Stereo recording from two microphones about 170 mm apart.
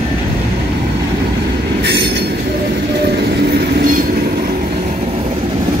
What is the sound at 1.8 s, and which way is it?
Train, 85° right.